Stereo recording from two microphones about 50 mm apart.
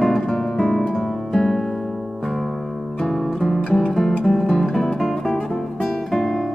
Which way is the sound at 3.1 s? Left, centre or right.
Centre.